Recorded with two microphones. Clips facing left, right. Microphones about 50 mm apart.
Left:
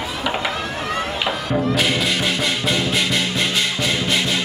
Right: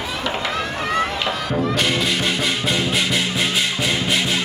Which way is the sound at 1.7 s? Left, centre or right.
Centre.